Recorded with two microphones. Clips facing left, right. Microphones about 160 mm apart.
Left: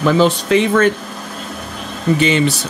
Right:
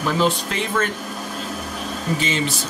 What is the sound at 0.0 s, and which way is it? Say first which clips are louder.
Speech: left 7 dB; 80° left.